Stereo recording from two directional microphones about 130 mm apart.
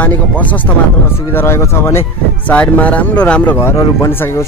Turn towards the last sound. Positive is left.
turn(degrees=20)  # may be behind; listen again after turning